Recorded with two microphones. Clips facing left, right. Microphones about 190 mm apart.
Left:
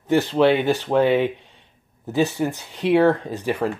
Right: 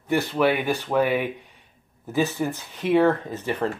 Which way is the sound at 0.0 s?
15° left (ahead or behind).